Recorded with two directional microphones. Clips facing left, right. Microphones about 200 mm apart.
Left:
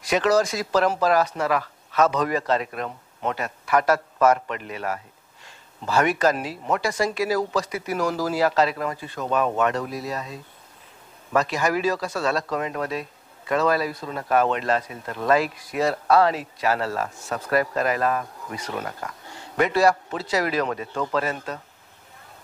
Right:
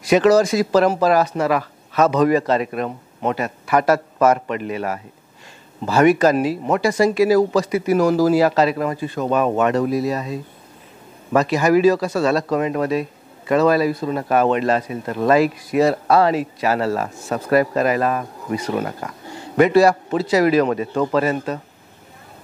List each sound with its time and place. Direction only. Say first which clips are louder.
0.1 s speech: right 7 dB; 10° right (ahead or behind)
11.3 s speech: right 7 dB; 10° right (ahead or behind)
18.2 s speech: right 9 dB; 25° right (ahead or behind)